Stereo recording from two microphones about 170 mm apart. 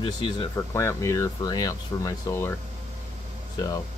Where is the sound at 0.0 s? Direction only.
20° left (ahead or behind).